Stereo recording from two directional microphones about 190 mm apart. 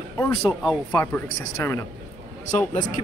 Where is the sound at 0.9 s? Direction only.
15° left (ahead or behind).